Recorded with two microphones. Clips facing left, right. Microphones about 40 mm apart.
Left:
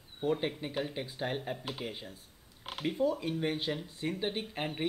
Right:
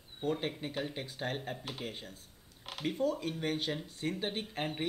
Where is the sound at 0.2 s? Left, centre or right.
Centre.